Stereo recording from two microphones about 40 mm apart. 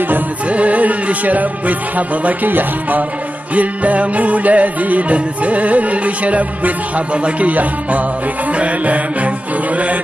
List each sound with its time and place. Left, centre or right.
0.5 s music: right
3.5 s music: right